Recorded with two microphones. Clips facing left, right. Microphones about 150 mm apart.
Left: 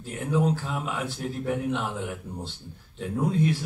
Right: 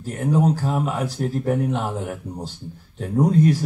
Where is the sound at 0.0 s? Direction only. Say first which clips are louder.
Right 5 dB; 40° right (ahead or behind).